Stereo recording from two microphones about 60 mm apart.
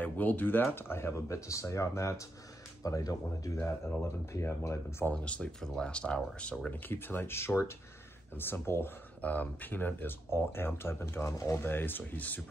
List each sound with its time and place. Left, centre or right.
0.0 s speech: left
1.1 s speech: left
2.8 s speech: left
3.5 s speech: left
5.1 s speech: centre
6.7 s speech: left
9.2 s speech: left